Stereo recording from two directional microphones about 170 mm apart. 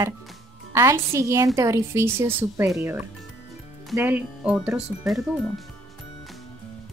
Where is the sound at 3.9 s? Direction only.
10° right (ahead or behind).